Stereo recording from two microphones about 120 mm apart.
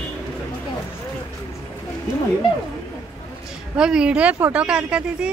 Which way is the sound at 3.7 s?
5° right (ahead or behind).